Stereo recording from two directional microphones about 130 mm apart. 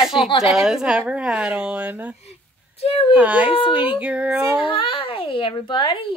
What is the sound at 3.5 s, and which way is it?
Speech, 40° left (ahead or behind).